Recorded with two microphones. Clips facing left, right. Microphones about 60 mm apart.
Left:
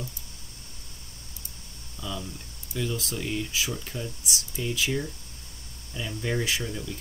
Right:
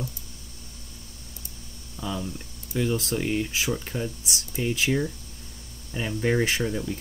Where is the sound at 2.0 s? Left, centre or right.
Right.